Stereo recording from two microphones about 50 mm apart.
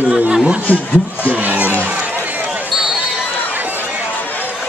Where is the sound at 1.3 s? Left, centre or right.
Right.